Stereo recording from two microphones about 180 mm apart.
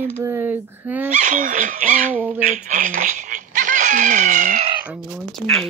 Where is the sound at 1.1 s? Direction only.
45° right (ahead or behind).